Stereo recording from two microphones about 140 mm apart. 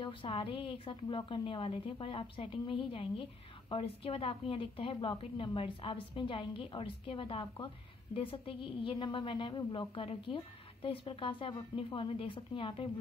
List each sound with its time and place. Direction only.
0.0 s a woman's voice: 35° left (ahead or behind)